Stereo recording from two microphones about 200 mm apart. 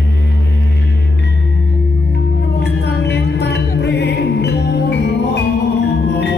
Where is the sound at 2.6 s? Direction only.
60° left (ahead or behind).